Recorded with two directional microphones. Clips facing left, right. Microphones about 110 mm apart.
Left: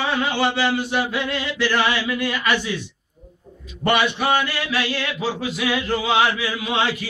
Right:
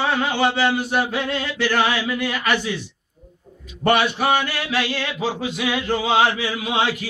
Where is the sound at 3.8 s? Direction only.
35° right (ahead or behind).